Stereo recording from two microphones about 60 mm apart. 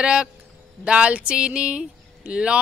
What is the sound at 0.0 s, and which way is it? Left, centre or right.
Speech, centre.